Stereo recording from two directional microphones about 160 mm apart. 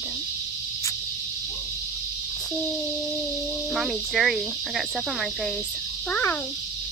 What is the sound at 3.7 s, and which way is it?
Speech, centre (ahead or behind).